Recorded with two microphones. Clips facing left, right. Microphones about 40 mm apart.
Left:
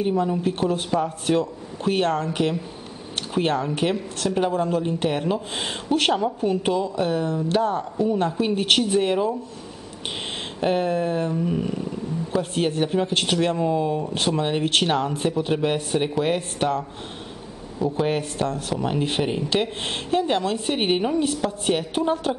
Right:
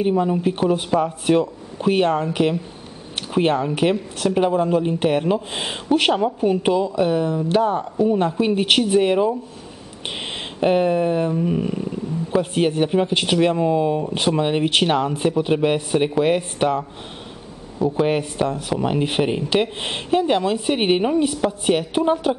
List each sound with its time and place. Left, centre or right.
0.0 s a woman's voice: centre
10.6 s a woman's voice: centre